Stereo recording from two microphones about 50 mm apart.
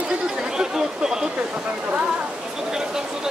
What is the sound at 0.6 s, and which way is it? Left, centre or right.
Speech, centre.